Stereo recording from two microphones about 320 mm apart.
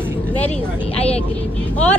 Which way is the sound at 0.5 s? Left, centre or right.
Centre.